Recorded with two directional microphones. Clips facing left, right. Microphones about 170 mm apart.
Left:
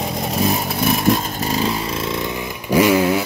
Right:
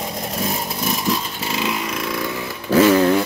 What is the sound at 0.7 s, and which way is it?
Motorcycle, 60° left (ahead or behind).